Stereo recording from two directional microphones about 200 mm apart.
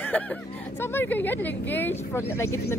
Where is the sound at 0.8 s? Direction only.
10° left (ahead or behind).